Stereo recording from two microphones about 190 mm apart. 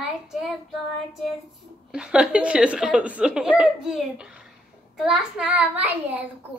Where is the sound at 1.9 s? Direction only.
5° right (ahead or behind).